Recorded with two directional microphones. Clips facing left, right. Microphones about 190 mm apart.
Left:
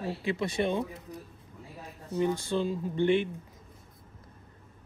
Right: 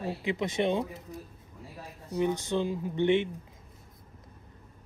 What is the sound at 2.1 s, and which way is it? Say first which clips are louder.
Speech: even; 15° right (ahead or behind).